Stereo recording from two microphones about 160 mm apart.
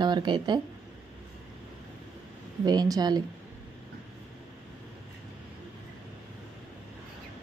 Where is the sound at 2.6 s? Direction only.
25° right (ahead or behind).